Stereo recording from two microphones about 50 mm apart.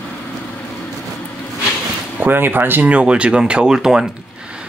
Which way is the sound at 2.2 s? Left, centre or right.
Right.